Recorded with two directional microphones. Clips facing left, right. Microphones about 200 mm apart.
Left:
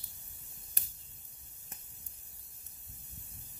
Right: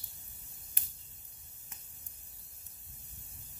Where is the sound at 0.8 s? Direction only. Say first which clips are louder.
Left 3 dB; 40° left (ahead or behind).